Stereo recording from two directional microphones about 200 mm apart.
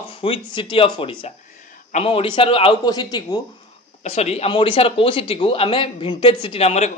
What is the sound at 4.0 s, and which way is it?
Speech, 35° left (ahead or behind).